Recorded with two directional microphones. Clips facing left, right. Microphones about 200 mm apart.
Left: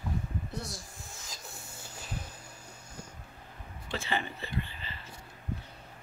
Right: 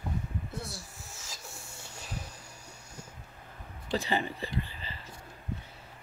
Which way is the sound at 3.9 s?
35° right (ahead or behind).